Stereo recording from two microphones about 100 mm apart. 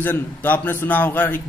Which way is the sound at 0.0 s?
20° left (ahead or behind).